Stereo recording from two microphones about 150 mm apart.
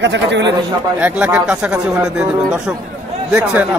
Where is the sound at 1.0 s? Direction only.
10° right (ahead or behind).